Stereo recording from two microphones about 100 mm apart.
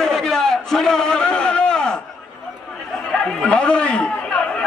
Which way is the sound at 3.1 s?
5° left (ahead or behind).